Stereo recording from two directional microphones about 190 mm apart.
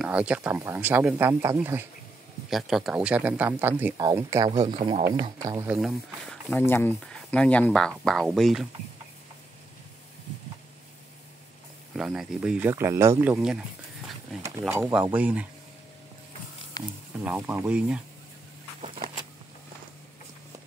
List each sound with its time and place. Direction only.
0.0 s speech: 5° right (ahead or behind)
2.5 s speech: centre (ahead or behind); by 4.5 s 15° right (ahead or behind)
4.5 s speech: 30° right (ahead or behind)
5.7 s speech: centre (ahead or behind)
6.6 s speech: 10° left (ahead or behind)
11.9 s speech: centre (ahead or behind)
14.7 s speech: 10° right (ahead or behind)
16.8 s speech: 20° left (ahead or behind)
17.2 s speech: 10° right (ahead or behind)